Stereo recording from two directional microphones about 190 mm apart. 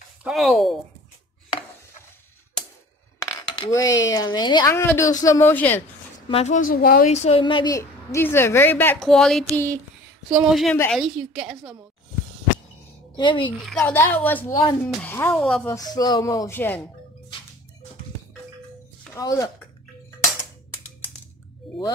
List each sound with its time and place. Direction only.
0.2 s a woman's voice: centre (ahead or behind)
3.5 s speech: 20° left (ahead or behind)
6.2 s a woman's voice: 35° left (ahead or behind); by 11.7 s 5° right (ahead or behind)
13.1 s speech: 25° left (ahead or behind)
13.7 s a woman's voice: 5° left (ahead or behind)
15.7 s speech: 20° left (ahead or behind)
19.1 s speech: 20° left (ahead or behind)